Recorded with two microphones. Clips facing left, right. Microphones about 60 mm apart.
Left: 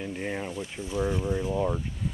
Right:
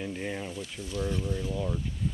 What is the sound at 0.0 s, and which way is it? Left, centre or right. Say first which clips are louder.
Speech: left 2 dB; centre.